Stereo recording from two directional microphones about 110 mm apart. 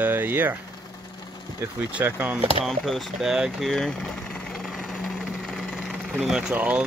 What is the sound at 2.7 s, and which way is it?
Speech, centre (ahead or behind).